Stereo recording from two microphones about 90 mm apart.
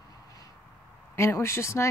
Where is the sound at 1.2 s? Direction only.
30° left (ahead or behind).